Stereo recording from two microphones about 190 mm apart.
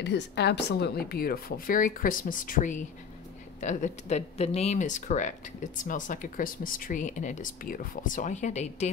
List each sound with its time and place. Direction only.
0.0 s speech: 65° left (ahead or behind); by 8.8 s 40° left (ahead or behind)